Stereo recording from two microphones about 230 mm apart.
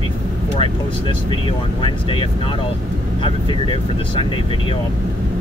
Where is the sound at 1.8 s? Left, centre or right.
Left.